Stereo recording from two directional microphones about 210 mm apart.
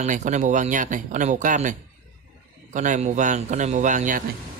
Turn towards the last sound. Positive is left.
turn(degrees=-40)  # may be behind; listen again after turning